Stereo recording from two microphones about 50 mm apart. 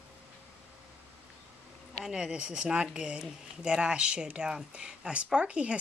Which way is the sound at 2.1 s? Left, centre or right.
Centre.